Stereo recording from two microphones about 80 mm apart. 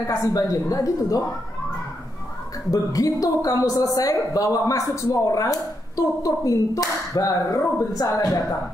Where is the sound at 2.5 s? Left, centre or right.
Left.